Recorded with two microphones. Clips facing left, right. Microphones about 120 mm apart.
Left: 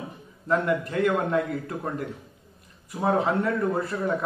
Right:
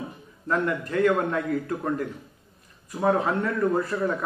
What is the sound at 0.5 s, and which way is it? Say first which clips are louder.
A man's voice: left 2 dB; 25° left (ahead or behind).